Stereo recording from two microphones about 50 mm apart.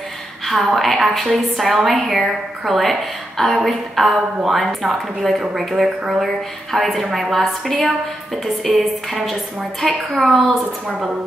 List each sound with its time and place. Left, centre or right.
0.5 s a woman's voice: centre
10.9 s speech: centre